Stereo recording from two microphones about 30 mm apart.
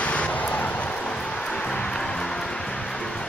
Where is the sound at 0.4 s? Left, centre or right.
Left.